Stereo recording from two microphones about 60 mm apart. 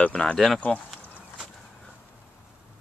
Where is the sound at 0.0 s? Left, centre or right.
Centre.